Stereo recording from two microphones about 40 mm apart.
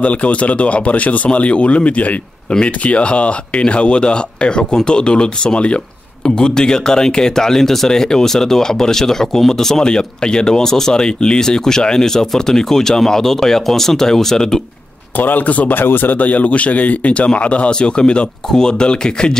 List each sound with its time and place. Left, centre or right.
0.0 s speech: left; by 14.6 s centre
15.1 s a man's voice: left
15.7 s speech: left